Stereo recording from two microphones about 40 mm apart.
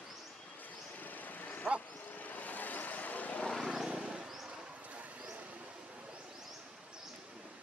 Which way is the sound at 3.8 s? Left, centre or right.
Centre.